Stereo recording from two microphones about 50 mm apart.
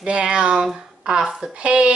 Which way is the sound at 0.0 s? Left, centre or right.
Centre.